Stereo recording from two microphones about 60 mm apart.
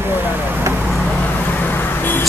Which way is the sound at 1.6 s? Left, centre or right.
Left.